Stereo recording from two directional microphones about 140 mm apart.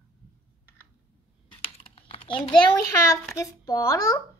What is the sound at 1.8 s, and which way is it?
Typing, 45° left (ahead or behind).